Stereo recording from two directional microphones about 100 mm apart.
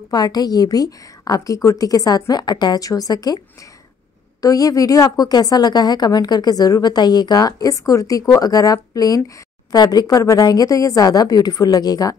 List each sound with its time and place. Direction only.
0.1 s a woman's voice: 40° left (ahead or behind)
4.4 s a woman's voice: 35° left (ahead or behind)